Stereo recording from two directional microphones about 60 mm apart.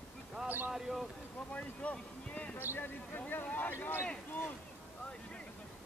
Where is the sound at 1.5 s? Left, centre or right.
Left.